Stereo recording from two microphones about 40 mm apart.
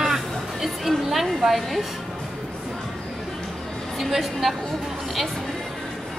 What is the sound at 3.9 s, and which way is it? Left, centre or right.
Speech, centre.